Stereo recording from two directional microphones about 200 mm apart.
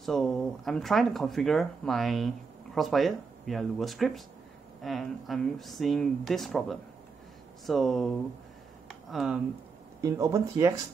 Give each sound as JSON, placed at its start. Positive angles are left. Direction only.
{"t": 0.0, "sound": "speech", "side_deg": 0}
{"t": 8.8, "sound": "a sound", "side_deg": 0}
{"t": 10.0, "sound": "speech", "side_deg": -15}